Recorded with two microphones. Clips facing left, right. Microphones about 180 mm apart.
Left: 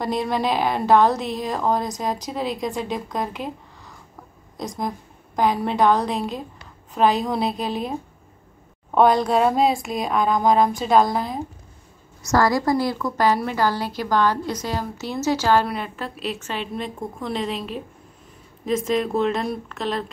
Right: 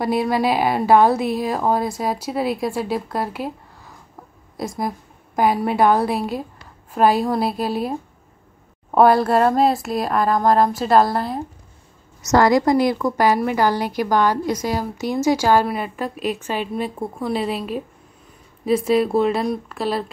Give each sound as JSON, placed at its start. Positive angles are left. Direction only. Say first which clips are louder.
{"t": 0.0, "sound": "a woman's voice", "louder": "right 4 dB", "side_deg": -5}
{"t": 12.2, "sound": "speech", "louder": "right 4 dB", "side_deg": -20}